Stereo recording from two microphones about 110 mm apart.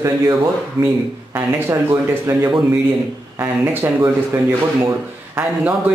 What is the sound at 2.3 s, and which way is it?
Speech, 20° right (ahead or behind).